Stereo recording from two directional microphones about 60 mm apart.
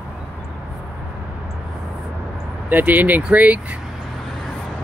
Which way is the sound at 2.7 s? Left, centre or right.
Right.